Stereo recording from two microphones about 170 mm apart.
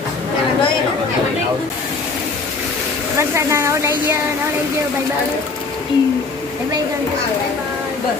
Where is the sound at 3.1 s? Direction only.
15° right (ahead or behind).